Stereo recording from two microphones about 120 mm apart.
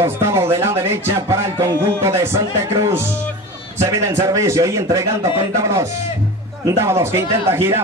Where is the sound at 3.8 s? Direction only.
25° right (ahead or behind).